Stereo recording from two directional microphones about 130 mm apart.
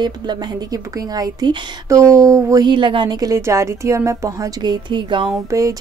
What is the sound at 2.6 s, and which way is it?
A woman's voice, 40° right (ahead or behind).